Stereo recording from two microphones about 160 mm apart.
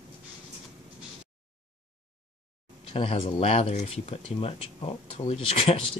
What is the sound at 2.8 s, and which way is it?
Speech, 35° left (ahead or behind).